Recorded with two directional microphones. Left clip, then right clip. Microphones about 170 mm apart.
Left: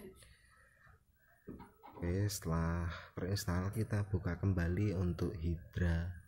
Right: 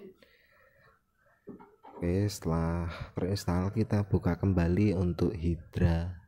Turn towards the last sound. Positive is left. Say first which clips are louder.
# right 8 dB
turn(degrees=-30)  # may be behind; listen again after turning